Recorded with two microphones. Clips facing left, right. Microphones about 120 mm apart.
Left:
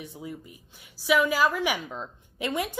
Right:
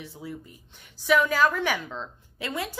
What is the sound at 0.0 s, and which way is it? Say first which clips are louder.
A woman's voice: even; 20° left (ahead or behind).